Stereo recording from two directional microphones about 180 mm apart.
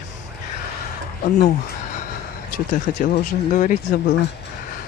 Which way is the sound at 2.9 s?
50° left (ahead or behind).